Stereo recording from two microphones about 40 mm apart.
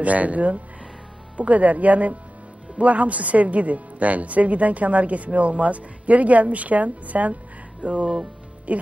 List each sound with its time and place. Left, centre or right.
0.0 s speech: right